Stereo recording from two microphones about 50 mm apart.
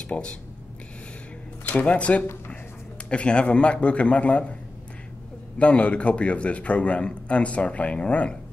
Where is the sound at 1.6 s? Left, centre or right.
Left.